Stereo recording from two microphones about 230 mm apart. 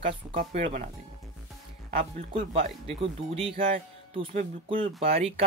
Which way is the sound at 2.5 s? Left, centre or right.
Right.